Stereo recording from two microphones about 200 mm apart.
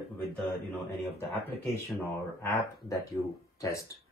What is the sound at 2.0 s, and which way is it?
Speech, 15° left (ahead or behind).